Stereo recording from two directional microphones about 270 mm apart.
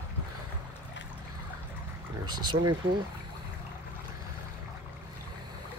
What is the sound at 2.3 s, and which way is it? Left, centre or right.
Speech, centre.